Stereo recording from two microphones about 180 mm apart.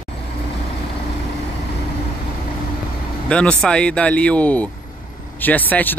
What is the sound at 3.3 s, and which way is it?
Speech, 5° left (ahead or behind).